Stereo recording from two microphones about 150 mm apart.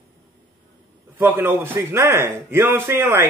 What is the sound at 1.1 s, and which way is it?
Speech, 15° right (ahead or behind).